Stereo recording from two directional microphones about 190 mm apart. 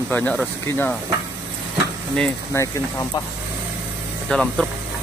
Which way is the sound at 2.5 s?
10° left (ahead or behind).